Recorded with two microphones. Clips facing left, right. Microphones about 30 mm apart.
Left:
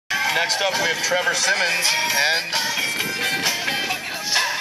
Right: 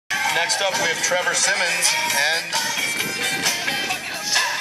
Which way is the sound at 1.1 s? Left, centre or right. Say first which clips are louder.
Left 1 dB; centre.